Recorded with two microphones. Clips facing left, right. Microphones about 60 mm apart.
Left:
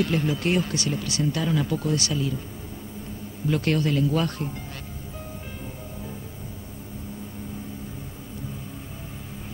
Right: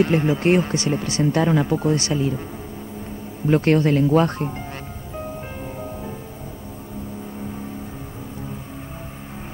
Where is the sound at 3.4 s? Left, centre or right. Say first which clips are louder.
Right 7 dB; right.